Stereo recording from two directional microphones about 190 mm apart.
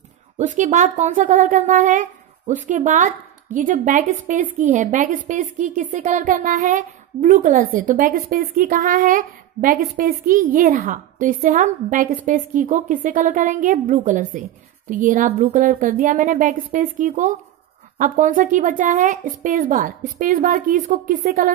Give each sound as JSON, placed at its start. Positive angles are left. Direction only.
{"t": 0.6, "sound": "a woman's voice", "side_deg": -40}